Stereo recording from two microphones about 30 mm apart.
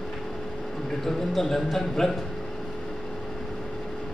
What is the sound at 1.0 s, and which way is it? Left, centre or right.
Speech, centre.